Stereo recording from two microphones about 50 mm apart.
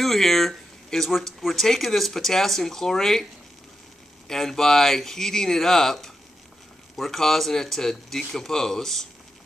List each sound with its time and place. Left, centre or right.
0.0 s speech: centre
4.3 s speech: centre